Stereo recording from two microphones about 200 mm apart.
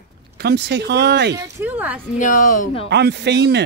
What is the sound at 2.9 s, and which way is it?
Speech, 60° right (ahead or behind).